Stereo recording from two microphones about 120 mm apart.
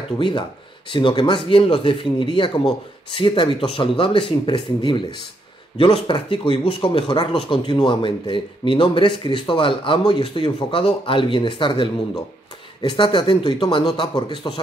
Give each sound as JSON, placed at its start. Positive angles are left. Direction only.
{"t": 0.2, "sound": "a man's voice", "side_deg": 40}